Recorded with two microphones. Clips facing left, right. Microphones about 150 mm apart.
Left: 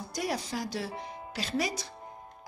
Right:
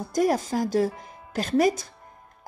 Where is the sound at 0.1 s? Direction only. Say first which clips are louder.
Right 11 dB; 45° right (ahead or behind).